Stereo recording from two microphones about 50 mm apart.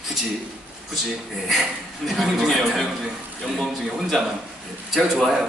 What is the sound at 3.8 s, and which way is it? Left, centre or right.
A man's voice, centre.